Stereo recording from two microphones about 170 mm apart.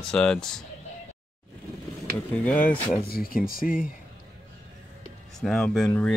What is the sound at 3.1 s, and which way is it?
Speech, 60° left (ahead or behind).